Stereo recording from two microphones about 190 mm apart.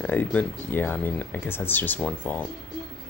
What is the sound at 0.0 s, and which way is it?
Speech, 10° left (ahead or behind).